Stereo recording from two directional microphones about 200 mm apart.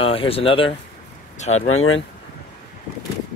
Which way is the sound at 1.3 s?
35° left (ahead or behind).